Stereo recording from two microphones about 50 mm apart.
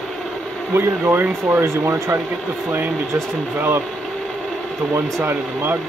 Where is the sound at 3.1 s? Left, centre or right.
Right.